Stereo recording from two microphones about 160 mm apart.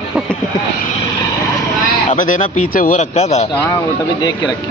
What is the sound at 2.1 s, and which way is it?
Speech, 55° left (ahead or behind).